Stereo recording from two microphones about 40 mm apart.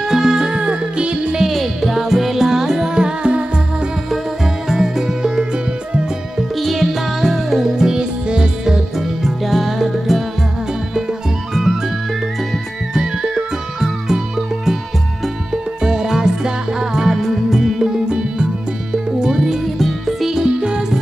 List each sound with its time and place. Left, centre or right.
0.0 s music: centre
1.4 s music: centre; by 3.4 s right
4.6 s music: centre
6.5 s music: centre
9.0 s music: centre
11.5 s music: centre
12.9 s music: centre
20.2 s music: centre